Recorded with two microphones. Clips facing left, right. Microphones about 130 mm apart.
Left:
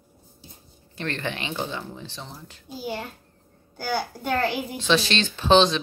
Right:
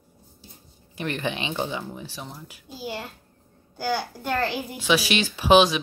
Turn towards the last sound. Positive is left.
turn(degrees=-10)  # may be behind; listen again after turning